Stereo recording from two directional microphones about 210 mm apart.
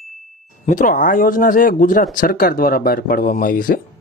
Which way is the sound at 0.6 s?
40° left (ahead or behind).